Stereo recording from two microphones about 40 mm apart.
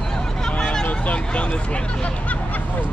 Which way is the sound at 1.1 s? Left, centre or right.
Left.